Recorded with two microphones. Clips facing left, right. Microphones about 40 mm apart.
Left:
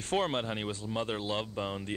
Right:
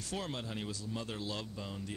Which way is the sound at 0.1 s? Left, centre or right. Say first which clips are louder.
Left 10 dB; left.